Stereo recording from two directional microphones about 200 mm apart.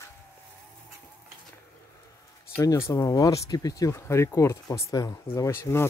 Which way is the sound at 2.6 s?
15° left (ahead or behind).